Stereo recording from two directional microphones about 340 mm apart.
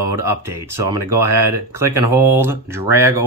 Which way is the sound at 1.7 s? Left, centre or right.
Centre.